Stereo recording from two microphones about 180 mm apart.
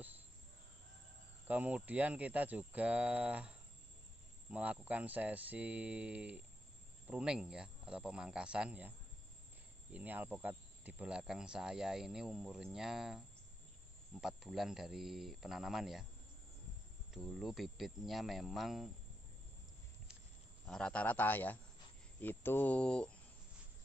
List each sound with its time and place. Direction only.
1.5 s speech: 10° right (ahead or behind)
9.9 s speech: 10° right (ahead or behind)
14.2 s speech: centre (ahead or behind)
17.1 s speech: centre (ahead or behind)
20.6 s a man's voice: 5° left (ahead or behind)